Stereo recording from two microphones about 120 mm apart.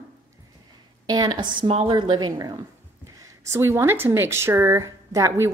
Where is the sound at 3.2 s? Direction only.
25° right (ahead or behind).